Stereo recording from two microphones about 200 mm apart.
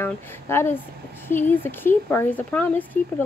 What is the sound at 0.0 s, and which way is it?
Speech, 10° left (ahead or behind).